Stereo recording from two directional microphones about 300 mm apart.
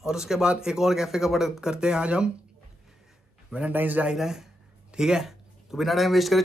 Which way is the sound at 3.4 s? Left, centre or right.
Centre.